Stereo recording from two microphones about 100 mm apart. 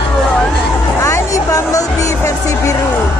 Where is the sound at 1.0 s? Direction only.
35° left (ahead or behind).